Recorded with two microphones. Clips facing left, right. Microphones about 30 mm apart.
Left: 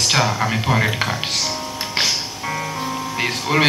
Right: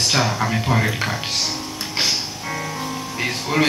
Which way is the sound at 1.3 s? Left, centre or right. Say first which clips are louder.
Left 1 dB; centre.